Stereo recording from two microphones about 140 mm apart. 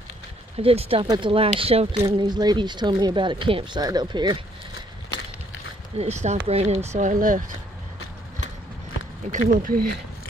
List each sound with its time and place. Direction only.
0.6 s speech: 45° right (ahead or behind)
2.0 s speech: 30° right (ahead or behind)
5.9 s speech: 50° right (ahead or behind); by 7.5 s 75° right (ahead or behind)
9.3 s speech: 70° right (ahead or behind); by 9.9 s 85° right